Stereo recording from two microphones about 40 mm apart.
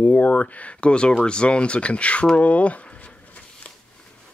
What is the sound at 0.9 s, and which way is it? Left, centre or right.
Speech, left.